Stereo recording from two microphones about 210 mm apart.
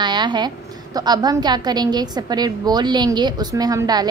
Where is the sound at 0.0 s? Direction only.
20° right (ahead or behind).